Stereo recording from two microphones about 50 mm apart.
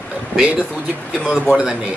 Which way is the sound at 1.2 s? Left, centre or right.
Right.